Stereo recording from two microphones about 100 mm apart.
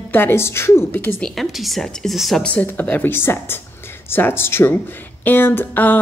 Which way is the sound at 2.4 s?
15° left (ahead or behind).